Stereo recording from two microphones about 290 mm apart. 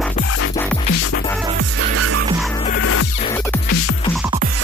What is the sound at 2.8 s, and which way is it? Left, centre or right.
Music, left.